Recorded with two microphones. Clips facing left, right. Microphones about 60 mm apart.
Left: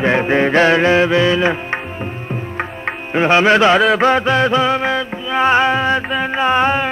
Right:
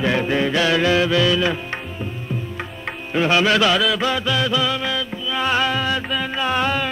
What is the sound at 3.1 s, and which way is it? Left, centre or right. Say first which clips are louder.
Music: left 5 dB; left.